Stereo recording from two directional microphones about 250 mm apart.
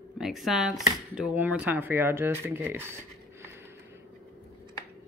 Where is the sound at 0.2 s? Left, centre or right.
Centre.